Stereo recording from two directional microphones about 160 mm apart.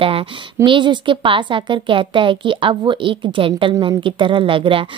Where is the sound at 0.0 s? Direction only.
35° right (ahead or behind).